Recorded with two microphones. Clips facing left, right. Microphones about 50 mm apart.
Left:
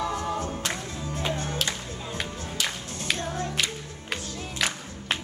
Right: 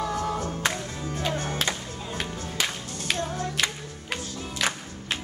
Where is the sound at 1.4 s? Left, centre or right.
Right.